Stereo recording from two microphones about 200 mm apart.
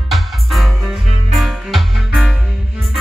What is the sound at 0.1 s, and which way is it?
Music, centre (ahead or behind).